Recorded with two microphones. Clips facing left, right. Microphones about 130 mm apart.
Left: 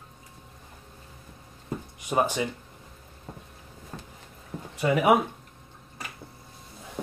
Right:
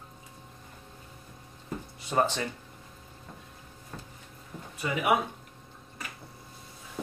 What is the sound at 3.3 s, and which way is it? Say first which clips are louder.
Vehicle: left 6 dB; 35° left (ahead or behind).